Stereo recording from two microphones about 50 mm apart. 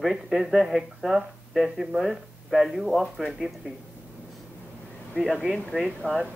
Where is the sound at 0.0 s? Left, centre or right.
Centre.